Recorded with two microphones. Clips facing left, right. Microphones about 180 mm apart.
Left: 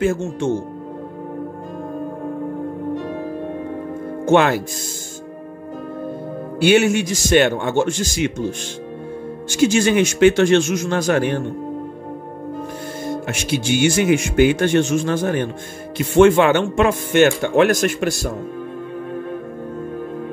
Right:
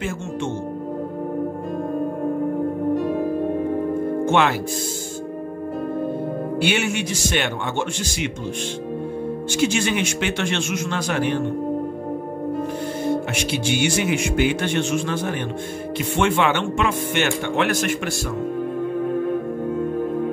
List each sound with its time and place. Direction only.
0.0 s speech: 40° left (ahead or behind)
4.3 s speech: 45° left (ahead or behind)
6.6 s speech: 45° left (ahead or behind)
9.6 s speech: 45° left (ahead or behind)
13.1 s speech: 45° left (ahead or behind)